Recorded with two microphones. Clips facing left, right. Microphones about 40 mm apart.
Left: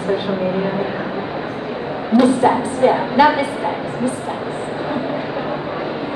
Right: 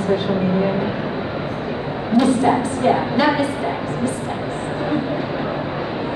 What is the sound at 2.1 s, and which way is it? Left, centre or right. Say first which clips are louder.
Speech: left 2 dB; left.